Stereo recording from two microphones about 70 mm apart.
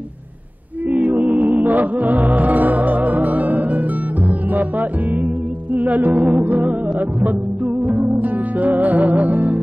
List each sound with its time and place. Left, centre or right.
0.8 s music: right